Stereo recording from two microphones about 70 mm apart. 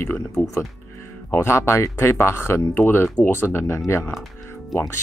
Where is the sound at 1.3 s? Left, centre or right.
Left.